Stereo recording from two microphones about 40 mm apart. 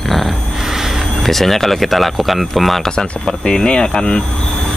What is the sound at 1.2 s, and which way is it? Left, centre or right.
Speech, centre.